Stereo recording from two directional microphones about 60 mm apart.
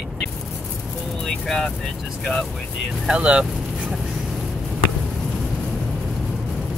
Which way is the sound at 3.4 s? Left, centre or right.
Centre.